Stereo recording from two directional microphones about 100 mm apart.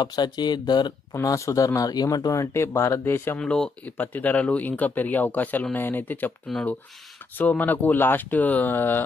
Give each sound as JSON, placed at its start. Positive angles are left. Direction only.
{"t": 0.0, "sound": "speech", "side_deg": 45}
{"t": 1.2, "sound": "speech", "side_deg": 30}
{"t": 3.3, "sound": "speech", "side_deg": 10}
{"t": 7.3, "sound": "speech", "side_deg": 15}